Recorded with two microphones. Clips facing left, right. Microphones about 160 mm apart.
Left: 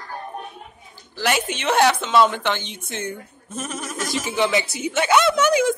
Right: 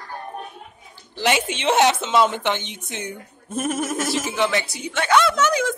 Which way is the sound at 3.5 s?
50° right (ahead or behind).